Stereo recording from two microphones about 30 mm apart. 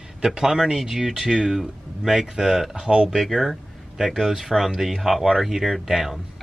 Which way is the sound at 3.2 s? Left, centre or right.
Centre.